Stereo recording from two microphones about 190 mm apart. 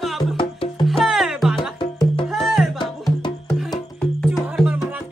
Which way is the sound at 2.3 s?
Centre (ahead or behind).